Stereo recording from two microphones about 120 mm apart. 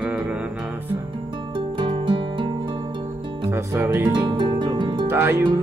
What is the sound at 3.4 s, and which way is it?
Speech, 20° right (ahead or behind).